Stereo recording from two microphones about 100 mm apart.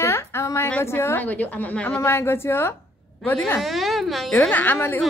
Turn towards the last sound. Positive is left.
turn(degrees=20)  # may be behind; listen again after turning